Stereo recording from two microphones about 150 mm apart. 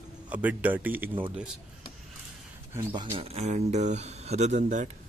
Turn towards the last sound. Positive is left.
turn(degrees=-55)  # may be behind; listen again after turning